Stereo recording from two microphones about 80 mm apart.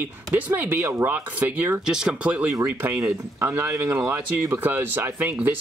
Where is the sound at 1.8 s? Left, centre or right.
Centre.